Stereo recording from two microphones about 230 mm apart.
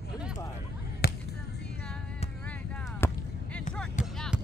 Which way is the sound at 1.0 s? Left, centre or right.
Left.